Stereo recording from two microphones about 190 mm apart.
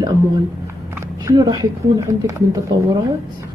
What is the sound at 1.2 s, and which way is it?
Speech, 20° right (ahead or behind).